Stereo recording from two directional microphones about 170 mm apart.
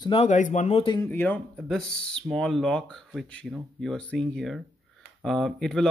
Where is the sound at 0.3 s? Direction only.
45° left (ahead or behind).